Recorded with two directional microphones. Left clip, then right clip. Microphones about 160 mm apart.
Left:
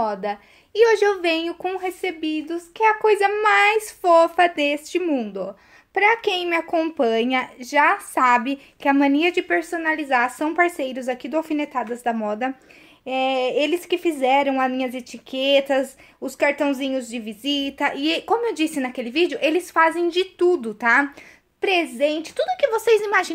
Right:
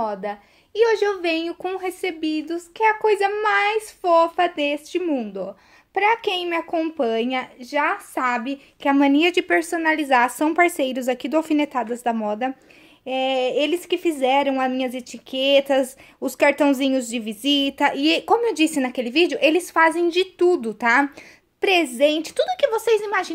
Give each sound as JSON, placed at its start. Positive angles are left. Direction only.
{"t": 0.0, "sound": "a woman's voice", "side_deg": 5}
{"t": 8.8, "sound": "a woman's voice", "side_deg": -10}
{"t": 9.2, "sound": "a woman's voice", "side_deg": -30}
{"t": 16.2, "sound": "a woman's voice", "side_deg": -35}
{"t": 22.6, "sound": "a woman's voice", "side_deg": -5}